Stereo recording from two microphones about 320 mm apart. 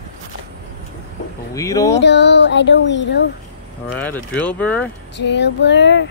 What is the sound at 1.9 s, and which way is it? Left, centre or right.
Child singing, left.